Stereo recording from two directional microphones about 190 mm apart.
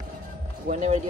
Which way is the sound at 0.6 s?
40° right (ahead or behind).